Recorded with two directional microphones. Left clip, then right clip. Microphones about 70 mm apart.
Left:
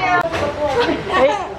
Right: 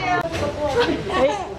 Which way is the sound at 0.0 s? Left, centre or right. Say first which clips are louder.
Left 5 dB; left.